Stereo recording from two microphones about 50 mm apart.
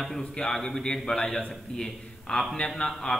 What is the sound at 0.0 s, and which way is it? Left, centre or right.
A man's voice, centre.